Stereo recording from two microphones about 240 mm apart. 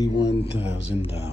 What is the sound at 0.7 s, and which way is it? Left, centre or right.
Speech, left.